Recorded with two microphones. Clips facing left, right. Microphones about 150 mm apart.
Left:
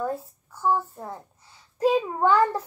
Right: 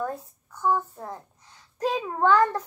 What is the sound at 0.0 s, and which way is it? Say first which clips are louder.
A woman's voice: left 2 dB; 5° left (ahead or behind).